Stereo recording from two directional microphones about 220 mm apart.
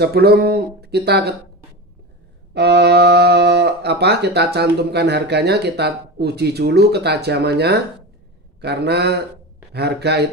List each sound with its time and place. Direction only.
0.0 s speech: 45° right (ahead or behind)
2.5 s speech: 50° right (ahead or behind)